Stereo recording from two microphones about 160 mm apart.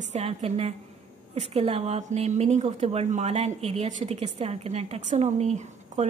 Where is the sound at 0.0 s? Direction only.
45° right (ahead or behind).